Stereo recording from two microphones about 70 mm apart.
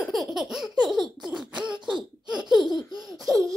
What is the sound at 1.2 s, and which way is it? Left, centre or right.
Beatboxing, centre.